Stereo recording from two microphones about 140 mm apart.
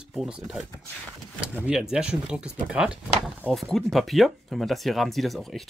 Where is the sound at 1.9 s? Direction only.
5° right (ahead or behind).